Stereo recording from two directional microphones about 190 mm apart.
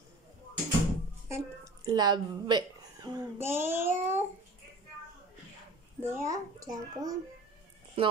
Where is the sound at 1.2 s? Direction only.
15° right (ahead or behind).